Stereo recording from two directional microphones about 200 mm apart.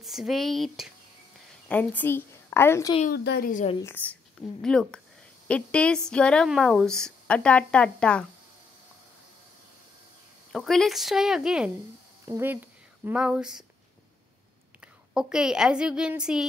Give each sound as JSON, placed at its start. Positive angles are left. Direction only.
{"t": 0.0, "sound": "a woman's voice", "side_deg": 0}
{"t": 3.1, "sound": "speech", "side_deg": 50}
{"t": 3.8, "sound": "speech", "side_deg": 10}
{"t": 10.5, "sound": "speech", "side_deg": 0}
{"t": 15.1, "sound": "speech", "side_deg": -5}